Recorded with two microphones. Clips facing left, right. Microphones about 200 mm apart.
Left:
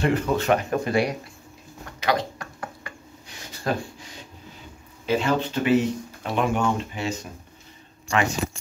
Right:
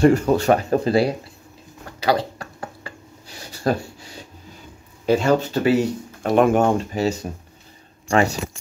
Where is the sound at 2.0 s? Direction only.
35° right (ahead or behind).